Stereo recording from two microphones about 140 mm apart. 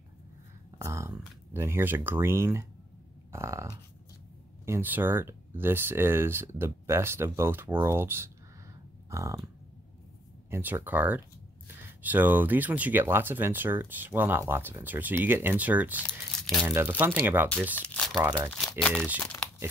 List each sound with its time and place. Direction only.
0.7 s speech: 20° right (ahead or behind)
3.3 s burping: 20° right (ahead or behind)
4.6 s speech: 15° right (ahead or behind)
9.1 s burping: 20° right (ahead or behind)
10.5 s speech: 15° right (ahead or behind)
16.1 s speech: 5° left (ahead or behind)
16.6 s speech: 15° right (ahead or behind)
17.7 s crumpling: 10° left (ahead or behind)
18.5 s speech: 5° left (ahead or behind)